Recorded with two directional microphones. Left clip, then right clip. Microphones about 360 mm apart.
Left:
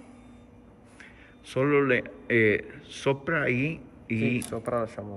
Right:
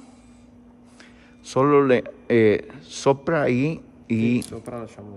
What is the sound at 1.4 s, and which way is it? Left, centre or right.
A man's voice, centre.